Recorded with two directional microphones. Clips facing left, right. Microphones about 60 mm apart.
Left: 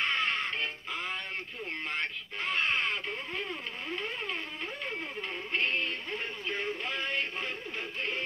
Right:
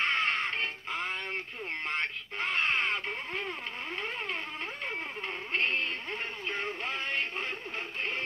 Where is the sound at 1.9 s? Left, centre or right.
Right.